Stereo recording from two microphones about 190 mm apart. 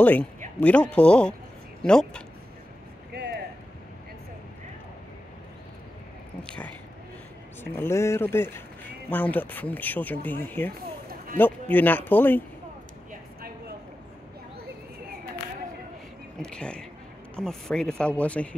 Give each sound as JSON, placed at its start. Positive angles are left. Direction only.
{"t": 0.0, "sound": "speech", "side_deg": 10}
{"t": 3.1, "sound": "a sound", "side_deg": -60}
{"t": 6.4, "sound": "speech", "side_deg": 5}
{"t": 11.7, "sound": "speech", "side_deg": 10}
{"t": 16.3, "sound": "speech", "side_deg": 5}